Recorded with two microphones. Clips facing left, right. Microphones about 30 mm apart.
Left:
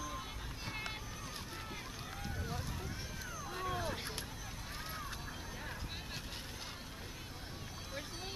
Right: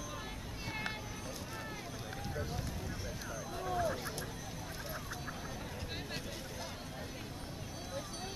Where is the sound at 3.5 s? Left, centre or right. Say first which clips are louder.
Right 4 dB; left.